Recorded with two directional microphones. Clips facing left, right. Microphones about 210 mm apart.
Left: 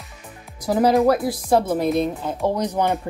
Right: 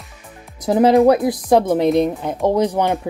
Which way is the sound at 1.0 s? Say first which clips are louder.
Right 5 dB; 20° right (ahead or behind).